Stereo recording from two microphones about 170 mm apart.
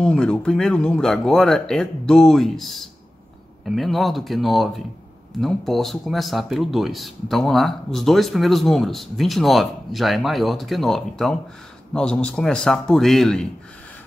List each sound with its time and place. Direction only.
0.0 s speech: 5° left (ahead or behind)